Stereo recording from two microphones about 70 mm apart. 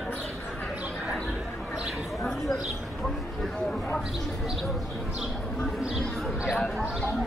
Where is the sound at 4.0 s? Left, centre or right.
Centre.